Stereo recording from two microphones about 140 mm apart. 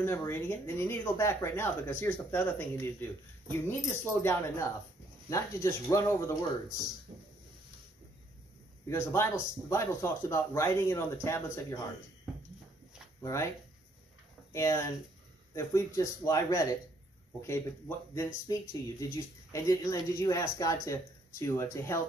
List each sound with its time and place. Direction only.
0.0 s speech: 15° left (ahead or behind)
8.8 s speech: 20° left (ahead or behind)
13.2 s speech: 20° left (ahead or behind)
14.5 s speech: 20° left (ahead or behind)